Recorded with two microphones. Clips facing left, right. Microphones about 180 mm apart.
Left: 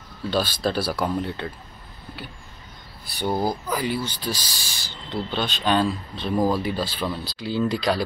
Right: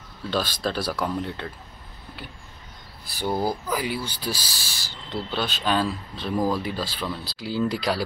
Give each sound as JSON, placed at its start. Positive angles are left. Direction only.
{"t": 0.3, "sound": "speech", "side_deg": 5}
{"t": 3.3, "sound": "speech", "side_deg": 15}
{"t": 3.6, "sound": "speech", "side_deg": -5}